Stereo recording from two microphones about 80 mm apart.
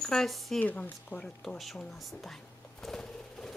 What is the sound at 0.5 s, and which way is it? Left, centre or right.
Speech, centre.